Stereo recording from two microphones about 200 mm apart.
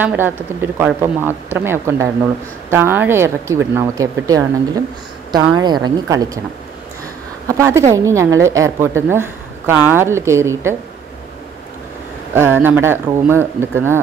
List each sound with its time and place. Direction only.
0.0 s a woman's voice: 10° right (ahead or behind)
7.4 s a woman's voice: 15° right (ahead or behind)
12.4 s a woman's voice: 10° right (ahead or behind)